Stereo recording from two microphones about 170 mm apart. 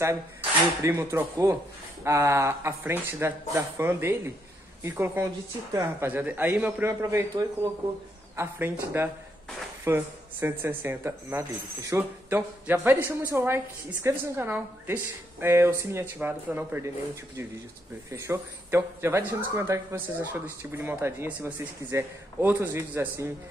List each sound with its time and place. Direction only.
0.0 s speech: 15° right (ahead or behind)